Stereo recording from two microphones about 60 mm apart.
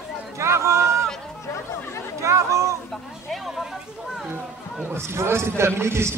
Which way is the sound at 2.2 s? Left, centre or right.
Right.